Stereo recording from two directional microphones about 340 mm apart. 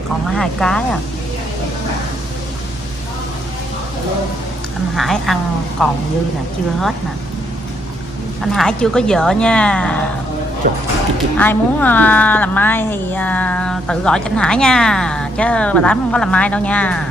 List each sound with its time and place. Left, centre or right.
0.4 s a woman's voice: centre
4.9 s a woman's voice: centre
8.5 s a woman's voice: centre
10.6 s speech: right
11.3 s a woman's voice: centre